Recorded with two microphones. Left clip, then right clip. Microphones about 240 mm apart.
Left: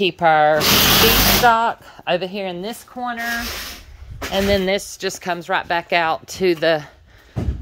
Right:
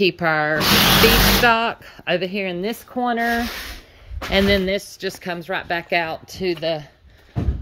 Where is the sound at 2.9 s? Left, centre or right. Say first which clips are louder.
Right 4 dB; right.